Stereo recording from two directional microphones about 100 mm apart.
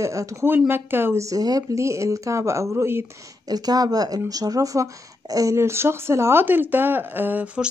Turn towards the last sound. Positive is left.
turn(degrees=-15)  # may be behind; listen again after turning